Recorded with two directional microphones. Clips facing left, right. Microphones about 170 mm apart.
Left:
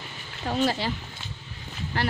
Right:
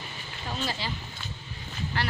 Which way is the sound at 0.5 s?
50° left (ahead or behind).